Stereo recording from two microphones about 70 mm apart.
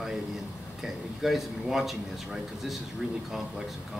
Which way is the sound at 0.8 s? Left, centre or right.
Centre.